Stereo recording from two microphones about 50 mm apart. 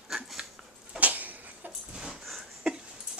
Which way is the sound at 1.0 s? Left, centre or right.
Right.